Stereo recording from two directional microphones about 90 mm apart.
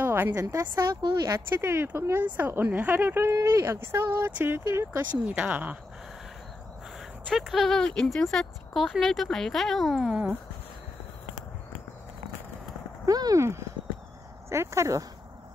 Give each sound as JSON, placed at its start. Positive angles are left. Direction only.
{"t": 0.0, "sound": "a sound", "side_deg": -20}
{"t": 0.4, "sound": "a woman's voice", "side_deg": -40}
{"t": 1.6, "sound": "speech", "side_deg": -30}
{"t": 5.1, "sound": "speech", "side_deg": -15}
{"t": 7.3, "sound": "speech", "side_deg": 0}
{"t": 13.0, "sound": "speech", "side_deg": -40}